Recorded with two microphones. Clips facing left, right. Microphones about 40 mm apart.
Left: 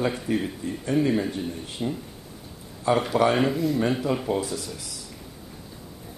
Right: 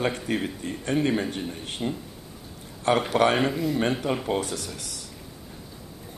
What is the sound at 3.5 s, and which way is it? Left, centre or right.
Speech, centre.